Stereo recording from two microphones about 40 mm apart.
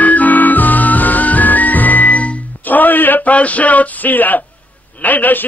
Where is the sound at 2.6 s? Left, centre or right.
Left.